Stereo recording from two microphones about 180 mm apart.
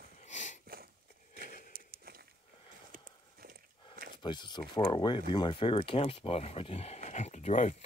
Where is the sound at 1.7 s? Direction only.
55° right (ahead or behind).